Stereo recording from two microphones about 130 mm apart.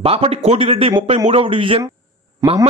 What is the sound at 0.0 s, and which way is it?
A man's voice, 50° right (ahead or behind).